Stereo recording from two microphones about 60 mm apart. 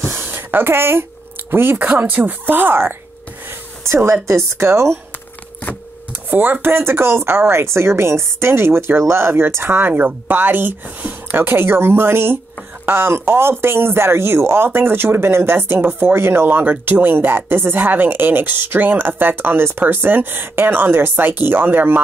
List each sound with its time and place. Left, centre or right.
0.0 s a sound: right
1.5 s speech: right
3.8 s speech: right
6.3 s speech: right